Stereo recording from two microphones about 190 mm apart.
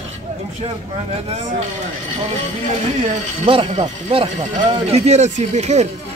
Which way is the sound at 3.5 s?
30° right (ahead or behind).